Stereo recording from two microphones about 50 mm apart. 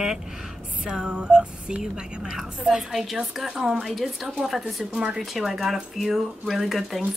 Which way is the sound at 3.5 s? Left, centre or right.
Centre.